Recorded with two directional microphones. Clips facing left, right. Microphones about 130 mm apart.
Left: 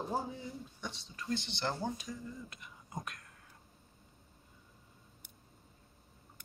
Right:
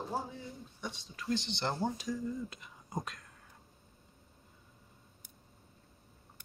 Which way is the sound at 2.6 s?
25° right (ahead or behind).